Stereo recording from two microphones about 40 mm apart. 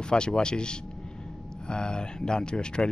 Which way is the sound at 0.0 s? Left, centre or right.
Left.